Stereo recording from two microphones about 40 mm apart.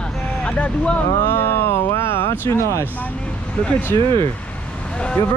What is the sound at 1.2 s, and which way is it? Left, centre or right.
Speech, left.